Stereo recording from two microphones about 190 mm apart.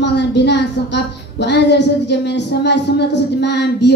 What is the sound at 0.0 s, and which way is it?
A woman's voice, 65° left (ahead or behind).